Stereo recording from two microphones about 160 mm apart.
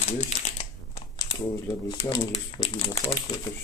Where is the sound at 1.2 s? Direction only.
25° left (ahead or behind).